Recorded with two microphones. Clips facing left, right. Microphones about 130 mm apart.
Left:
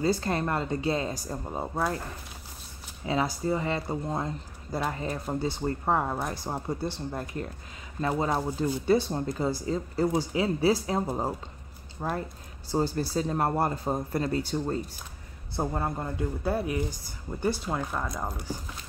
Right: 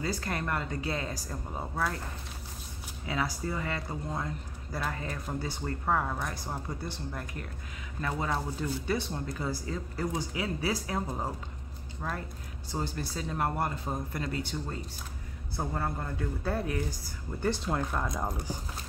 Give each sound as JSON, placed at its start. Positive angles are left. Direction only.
{"t": 0.0, "sound": "speech", "side_deg": 30}
{"t": 3.1, "sound": "speech", "side_deg": 25}
{"t": 15.5, "sound": "speech", "side_deg": 25}